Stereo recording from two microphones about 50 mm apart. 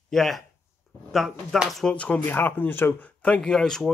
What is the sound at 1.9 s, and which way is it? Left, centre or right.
Speech, left.